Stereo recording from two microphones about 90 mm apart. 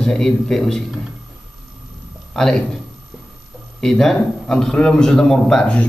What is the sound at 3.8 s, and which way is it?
A man's voice, 5° left (ahead or behind).